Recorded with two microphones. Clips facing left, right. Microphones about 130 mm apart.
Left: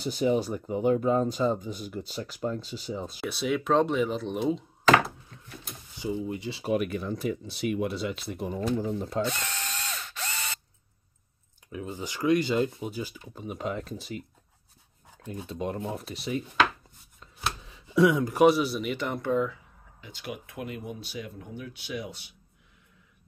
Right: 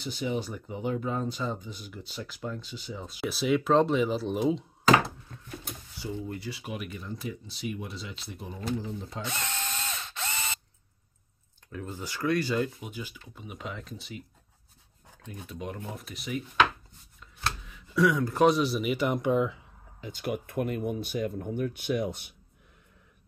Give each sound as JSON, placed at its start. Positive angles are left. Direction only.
{"t": 0.0, "sound": "speech", "side_deg": 40}
{"t": 3.2, "sound": "speech", "side_deg": 0}
{"t": 5.9, "sound": "speech", "side_deg": 15}
{"t": 6.6, "sound": "speech", "side_deg": 50}
{"t": 9.4, "sound": "ratchet", "side_deg": -20}
{"t": 11.7, "sound": "speech", "side_deg": 15}
{"t": 12.8, "sound": "speech", "side_deg": 35}
{"t": 15.2, "sound": "speech", "side_deg": 30}
{"t": 17.6, "sound": "speech", "side_deg": 25}
{"t": 20.0, "sound": "speech", "side_deg": -45}